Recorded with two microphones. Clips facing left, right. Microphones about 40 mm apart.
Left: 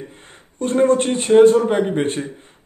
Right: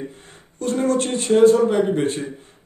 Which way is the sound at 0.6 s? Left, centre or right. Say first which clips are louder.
Left 4 dB; left.